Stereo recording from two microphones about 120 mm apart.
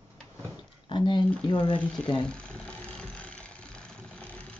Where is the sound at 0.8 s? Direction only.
40° left (ahead or behind).